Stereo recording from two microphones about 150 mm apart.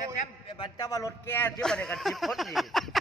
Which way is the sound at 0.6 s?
25° left (ahead or behind).